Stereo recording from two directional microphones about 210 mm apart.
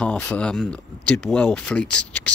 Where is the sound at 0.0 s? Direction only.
5° left (ahead or behind).